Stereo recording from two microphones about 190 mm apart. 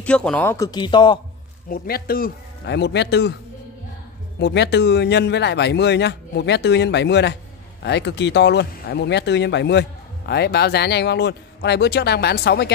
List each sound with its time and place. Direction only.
0.0 s speech: 5° left (ahead or behind); by 1.2 s 25° left (ahead or behind)
1.7 s speech: 55° left (ahead or behind)
4.4 s speech: 65° left (ahead or behind)